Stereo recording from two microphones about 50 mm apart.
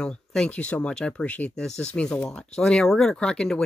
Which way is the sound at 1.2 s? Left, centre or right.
Left.